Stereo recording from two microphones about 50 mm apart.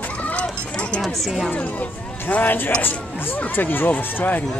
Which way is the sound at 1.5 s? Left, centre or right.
Left.